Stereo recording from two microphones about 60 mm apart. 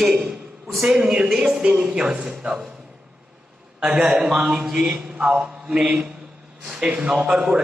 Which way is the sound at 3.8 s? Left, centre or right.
Centre.